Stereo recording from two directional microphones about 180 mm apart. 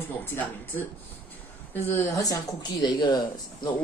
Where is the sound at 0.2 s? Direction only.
10° left (ahead or behind).